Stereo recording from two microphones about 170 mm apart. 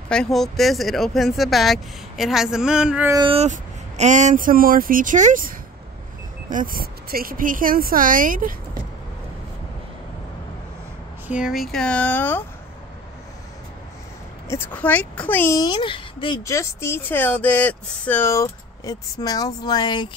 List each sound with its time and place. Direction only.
0.1 s speech: 5° left (ahead or behind)
3.1 s speech: 25° right (ahead or behind)
3.3 s speech: 45° right (ahead or behind)
11.2 s speech: 5° right (ahead or behind); by 12.4 s 10° left (ahead or behind)
14.5 s speech: 10° left (ahead or behind); by 16.3 s 30° left (ahead or behind)
16.4 s speech: 15° left (ahead or behind)